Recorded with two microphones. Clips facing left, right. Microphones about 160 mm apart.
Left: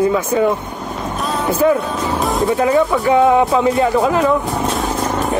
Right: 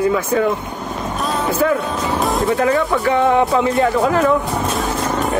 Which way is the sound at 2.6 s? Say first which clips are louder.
Left 4 dB; 15° left (ahead or behind).